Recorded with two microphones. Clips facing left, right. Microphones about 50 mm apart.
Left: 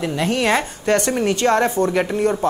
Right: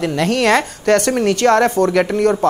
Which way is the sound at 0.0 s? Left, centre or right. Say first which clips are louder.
Right 4 dB; right.